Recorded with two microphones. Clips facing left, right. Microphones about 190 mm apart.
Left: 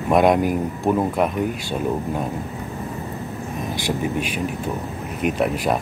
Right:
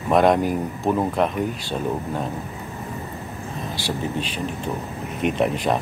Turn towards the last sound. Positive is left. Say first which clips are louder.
# even
turn(degrees=5)  # may be behind; listen again after turning